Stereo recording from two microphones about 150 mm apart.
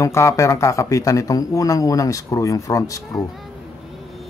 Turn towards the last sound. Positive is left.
turn(degrees=20)  # may be behind; listen again after turning